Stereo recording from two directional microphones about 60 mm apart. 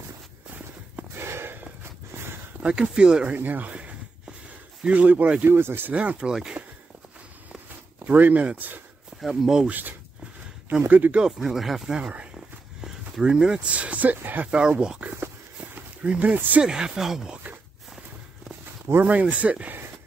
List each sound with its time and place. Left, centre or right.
0.9 s a sound: right
2.6 s speech: centre
3.3 s a sound: right
4.8 s speech: right
5.9 s speech: right
8.0 s speech: right
9.3 s speech: centre
9.7 s speech: right
11.1 s speech: centre
12.0 s speech: right
12.8 s speech: centre; by 14.5 s right
14.5 s speech: centre
16.6 s speech: centre
19.0 s speech: right